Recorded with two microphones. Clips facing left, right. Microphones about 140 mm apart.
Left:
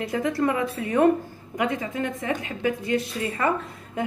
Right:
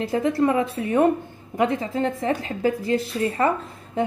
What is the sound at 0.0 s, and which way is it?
A woman's voice, 25° right (ahead or behind).